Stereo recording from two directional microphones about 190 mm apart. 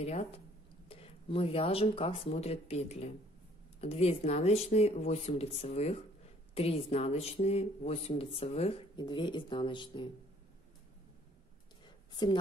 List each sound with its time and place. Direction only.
0.0 s speech: 35° left (ahead or behind)